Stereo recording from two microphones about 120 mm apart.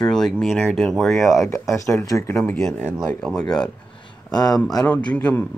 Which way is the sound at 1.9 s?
25° left (ahead or behind).